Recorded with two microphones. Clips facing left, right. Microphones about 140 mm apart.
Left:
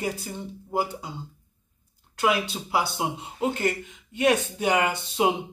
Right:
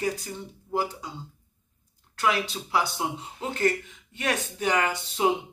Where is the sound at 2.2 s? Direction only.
10° left (ahead or behind).